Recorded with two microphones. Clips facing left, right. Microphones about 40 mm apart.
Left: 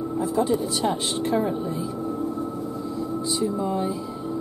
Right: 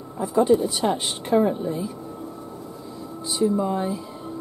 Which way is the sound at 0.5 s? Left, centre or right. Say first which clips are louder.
Right 4 dB; centre.